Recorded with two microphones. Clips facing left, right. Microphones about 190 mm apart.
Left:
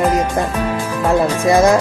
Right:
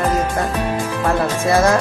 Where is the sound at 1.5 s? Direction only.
15° left (ahead or behind).